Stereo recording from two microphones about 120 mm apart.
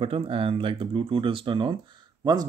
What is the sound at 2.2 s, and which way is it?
Speech, 35° right (ahead or behind).